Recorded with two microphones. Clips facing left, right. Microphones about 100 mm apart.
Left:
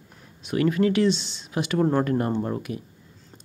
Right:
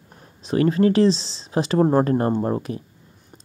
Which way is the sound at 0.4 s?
35° right (ahead or behind).